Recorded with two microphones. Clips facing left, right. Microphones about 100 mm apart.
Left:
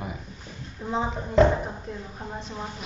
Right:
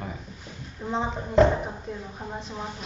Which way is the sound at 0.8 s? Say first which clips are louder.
Even; centre (ahead or behind).